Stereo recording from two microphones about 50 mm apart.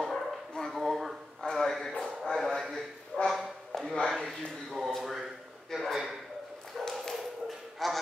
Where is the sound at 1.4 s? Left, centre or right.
Centre.